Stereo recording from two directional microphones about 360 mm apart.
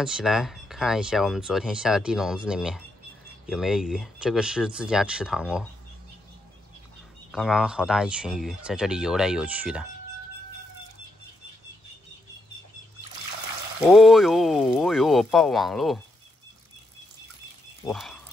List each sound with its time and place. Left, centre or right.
0.0 s speech: centre
7.2 s speech: centre
13.8 s speech: centre
17.8 s speech: centre